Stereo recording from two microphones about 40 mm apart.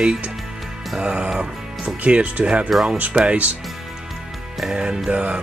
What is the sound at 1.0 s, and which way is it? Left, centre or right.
Speech, right.